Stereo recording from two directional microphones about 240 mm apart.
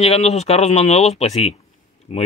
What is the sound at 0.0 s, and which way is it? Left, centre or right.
Speech, left.